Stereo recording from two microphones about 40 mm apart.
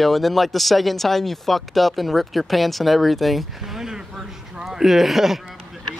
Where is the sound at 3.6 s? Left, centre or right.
Centre.